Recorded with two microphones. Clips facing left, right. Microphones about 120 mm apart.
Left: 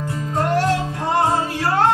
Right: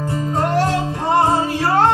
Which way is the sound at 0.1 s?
25° right (ahead or behind).